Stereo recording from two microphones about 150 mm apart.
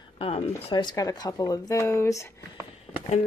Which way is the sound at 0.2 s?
40° left (ahead or behind).